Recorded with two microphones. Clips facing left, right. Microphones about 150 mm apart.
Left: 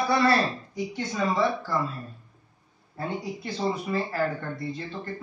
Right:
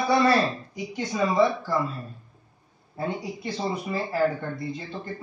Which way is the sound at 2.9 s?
10° right (ahead or behind).